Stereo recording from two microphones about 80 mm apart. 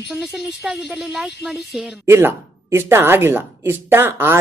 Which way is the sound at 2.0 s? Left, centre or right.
Right.